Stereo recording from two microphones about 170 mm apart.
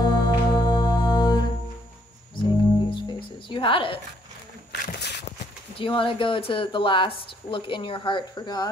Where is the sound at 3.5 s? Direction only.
30° left (ahead or behind).